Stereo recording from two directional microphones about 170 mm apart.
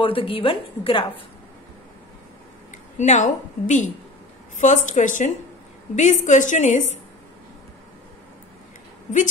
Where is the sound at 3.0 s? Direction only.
45° left (ahead or behind).